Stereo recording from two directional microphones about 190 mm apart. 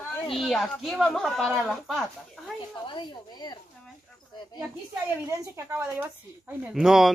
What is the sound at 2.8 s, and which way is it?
Speech, 25° left (ahead or behind).